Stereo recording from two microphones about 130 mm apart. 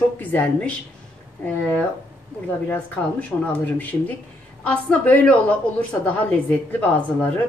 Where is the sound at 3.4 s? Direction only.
15° left (ahead or behind).